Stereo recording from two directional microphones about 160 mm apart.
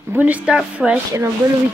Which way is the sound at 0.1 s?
10° right (ahead or behind).